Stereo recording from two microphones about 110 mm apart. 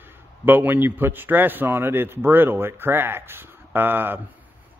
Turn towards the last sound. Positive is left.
turn(degrees=-20)  # may be behind; listen again after turning